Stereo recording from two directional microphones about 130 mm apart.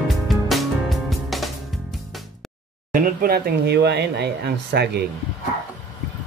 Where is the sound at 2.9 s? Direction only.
90° right.